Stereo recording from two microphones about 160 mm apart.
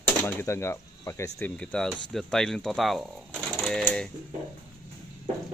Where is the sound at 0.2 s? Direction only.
10° left (ahead or behind).